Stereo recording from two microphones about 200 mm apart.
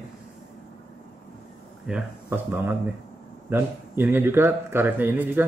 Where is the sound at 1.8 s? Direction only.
5° right (ahead or behind).